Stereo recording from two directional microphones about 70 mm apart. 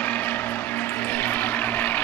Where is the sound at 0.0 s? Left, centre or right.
Left.